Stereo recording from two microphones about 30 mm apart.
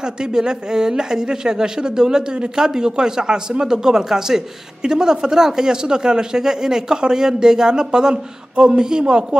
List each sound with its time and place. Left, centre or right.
0.0 s speech: right